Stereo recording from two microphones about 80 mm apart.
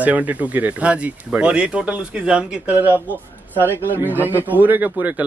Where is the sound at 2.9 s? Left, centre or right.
Left.